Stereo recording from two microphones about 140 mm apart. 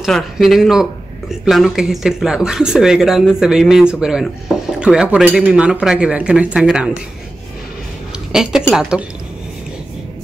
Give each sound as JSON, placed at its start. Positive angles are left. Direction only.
{"t": 0.0, "sound": "speech", "side_deg": 0}
{"t": 8.3, "sound": "a woman's voice", "side_deg": -5}